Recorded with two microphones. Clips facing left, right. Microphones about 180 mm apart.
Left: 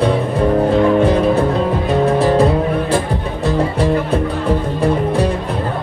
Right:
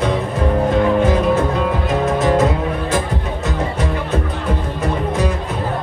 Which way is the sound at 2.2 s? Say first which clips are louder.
Left 3 dB; 30° left (ahead or behind).